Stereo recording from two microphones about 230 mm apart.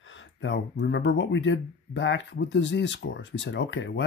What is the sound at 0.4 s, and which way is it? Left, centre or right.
Speech, left.